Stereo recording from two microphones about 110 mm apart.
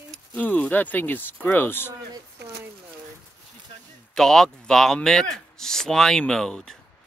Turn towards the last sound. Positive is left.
turn(degrees=5)  # may be behind; listen again after turning